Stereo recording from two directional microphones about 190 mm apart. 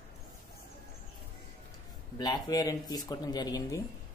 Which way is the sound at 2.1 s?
20° left (ahead or behind).